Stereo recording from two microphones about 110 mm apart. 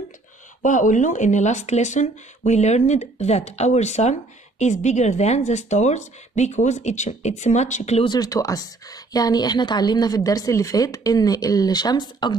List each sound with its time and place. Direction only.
0.9 s speech: 90° left
8.0 s a woman's voice: 40° left (ahead or behind)